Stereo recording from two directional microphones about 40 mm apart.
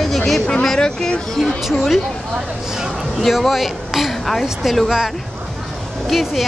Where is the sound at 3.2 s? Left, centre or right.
Centre.